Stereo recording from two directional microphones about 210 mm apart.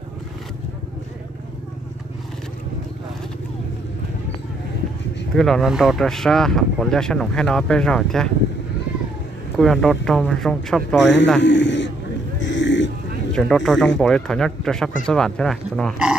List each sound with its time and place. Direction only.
5.3 s speech: centre (ahead or behind)
9.6 s speech: centre (ahead or behind)
11.4 s a man's voice: 55° left (ahead or behind)
12.4 s a sound: 60° left (ahead or behind)
13.3 s speech: 5° left (ahead or behind)